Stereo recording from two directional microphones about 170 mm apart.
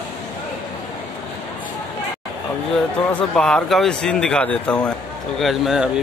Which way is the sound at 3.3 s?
5° left (ahead or behind).